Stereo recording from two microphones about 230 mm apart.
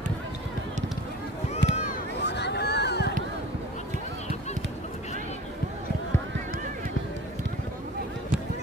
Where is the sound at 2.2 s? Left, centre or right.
Left.